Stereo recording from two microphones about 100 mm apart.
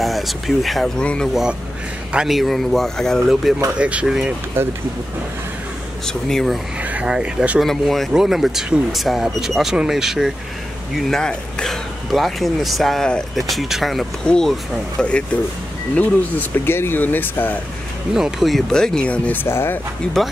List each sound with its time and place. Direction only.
0.0 s speech: centre (ahead or behind)
1.3 s speech: 5° right (ahead or behind)
3.7 s speech: 10° right (ahead or behind)
4.6 s speech: 25° right (ahead or behind)
6.0 s speech: 5° left (ahead or behind)
6.8 s speech: 15° right (ahead or behind)
7.6 s speech: centre (ahead or behind)
11.0 s speech: 5° left (ahead or behind)
18.1 s speech: 5° right (ahead or behind); by 19.8 s 25° left (ahead or behind)